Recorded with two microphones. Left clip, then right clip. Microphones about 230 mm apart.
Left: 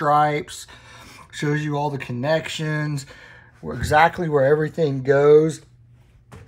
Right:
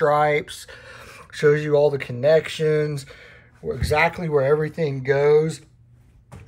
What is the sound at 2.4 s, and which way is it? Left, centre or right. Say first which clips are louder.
Speech: right 6 dB; centre.